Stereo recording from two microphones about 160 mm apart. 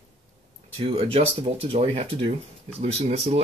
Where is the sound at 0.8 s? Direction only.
40° right (ahead or behind).